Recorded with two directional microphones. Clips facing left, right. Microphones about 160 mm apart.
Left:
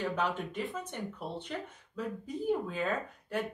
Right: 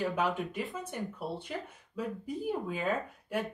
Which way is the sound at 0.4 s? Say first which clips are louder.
Right 1 dB; centre (ahead or behind).